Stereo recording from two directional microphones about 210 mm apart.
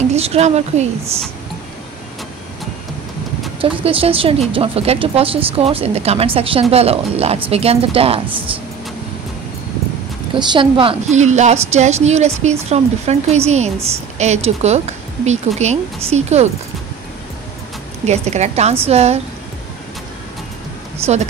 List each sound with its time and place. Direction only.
0.1 s a woman's voice: 30° right (ahead or behind)
3.8 s a woman's voice: 25° right (ahead or behind)
10.3 s speech: 25° right (ahead or behind)
18.0 s speech: 30° right (ahead or behind)